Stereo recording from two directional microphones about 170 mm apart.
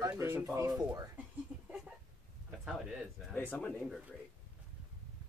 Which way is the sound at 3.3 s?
10° left (ahead or behind).